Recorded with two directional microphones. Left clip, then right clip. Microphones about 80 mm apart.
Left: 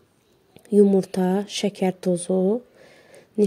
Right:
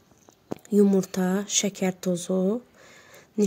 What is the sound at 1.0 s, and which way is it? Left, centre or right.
Speech, left.